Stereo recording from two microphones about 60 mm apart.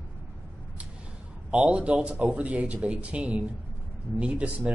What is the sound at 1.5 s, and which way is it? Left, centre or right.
Speech, right.